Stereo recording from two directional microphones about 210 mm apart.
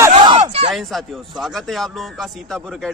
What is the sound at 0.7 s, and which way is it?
A man's voice, centre (ahead or behind).